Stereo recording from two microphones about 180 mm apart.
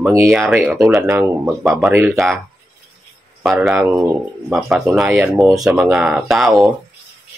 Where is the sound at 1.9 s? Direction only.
15° right (ahead or behind).